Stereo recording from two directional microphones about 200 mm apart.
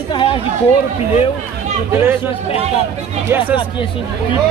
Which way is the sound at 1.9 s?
10° right (ahead or behind).